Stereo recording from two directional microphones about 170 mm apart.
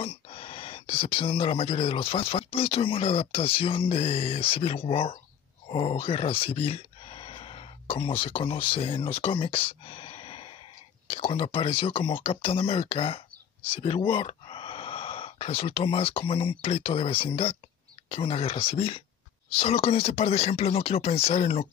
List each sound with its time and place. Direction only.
0.0 s speech: 30° left (ahead or behind)